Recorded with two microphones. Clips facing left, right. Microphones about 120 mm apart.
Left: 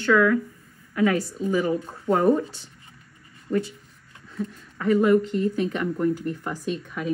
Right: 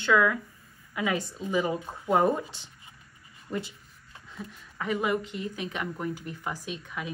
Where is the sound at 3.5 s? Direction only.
10° right (ahead or behind).